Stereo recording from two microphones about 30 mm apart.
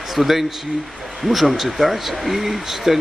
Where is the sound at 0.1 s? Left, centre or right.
Centre.